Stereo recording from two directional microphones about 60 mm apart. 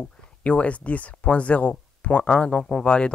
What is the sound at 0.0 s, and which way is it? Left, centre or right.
Speech, left.